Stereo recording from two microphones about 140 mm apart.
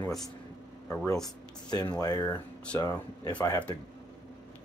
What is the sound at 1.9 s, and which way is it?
Speech, 30° left (ahead or behind).